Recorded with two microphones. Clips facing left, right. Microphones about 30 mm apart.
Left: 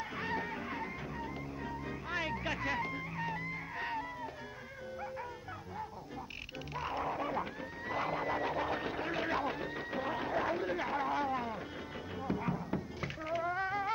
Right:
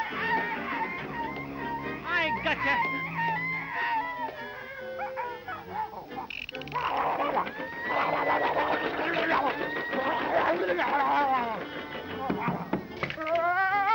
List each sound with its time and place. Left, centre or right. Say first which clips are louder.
0.0 s music: right 9 dB; right
6.7 s a sound: right 9 dB; right
12.2 s music: right 6 dB; right